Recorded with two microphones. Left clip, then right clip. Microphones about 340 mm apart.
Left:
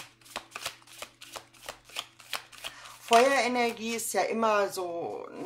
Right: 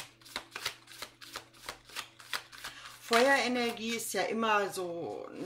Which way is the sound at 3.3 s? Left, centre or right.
Centre.